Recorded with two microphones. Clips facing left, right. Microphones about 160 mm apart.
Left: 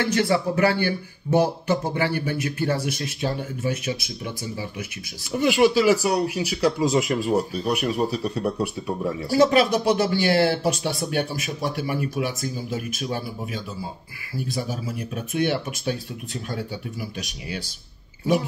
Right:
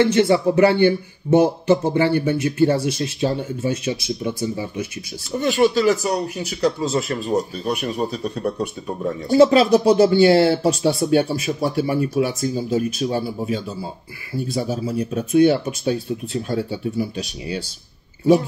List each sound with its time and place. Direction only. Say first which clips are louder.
0.0 s a man's voice: right 6 dB; 25° right (ahead or behind)
5.4 s speech: right 1 dB; 10° left (ahead or behind)
9.3 s a man's voice: right 5 dB; 25° right (ahead or behind)